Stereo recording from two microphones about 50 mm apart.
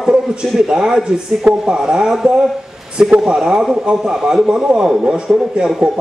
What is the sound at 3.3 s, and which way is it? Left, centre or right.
A man's voice, centre.